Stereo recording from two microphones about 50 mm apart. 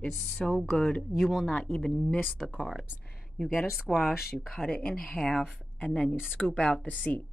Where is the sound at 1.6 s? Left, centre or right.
Centre.